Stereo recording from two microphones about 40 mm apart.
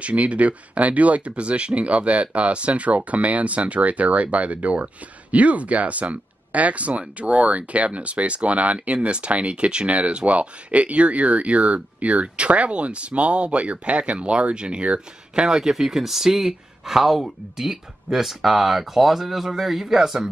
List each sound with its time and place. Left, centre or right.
0.0 s speech: right
15.4 s speech: centre